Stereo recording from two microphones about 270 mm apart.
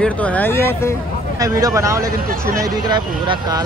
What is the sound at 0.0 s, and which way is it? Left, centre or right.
Speech, centre.